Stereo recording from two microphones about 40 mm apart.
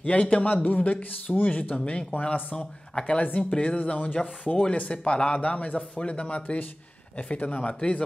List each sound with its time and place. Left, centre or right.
0.0 s speech: left
2.1 s speech: left
2.5 s speech: centre
6.4 s speech: left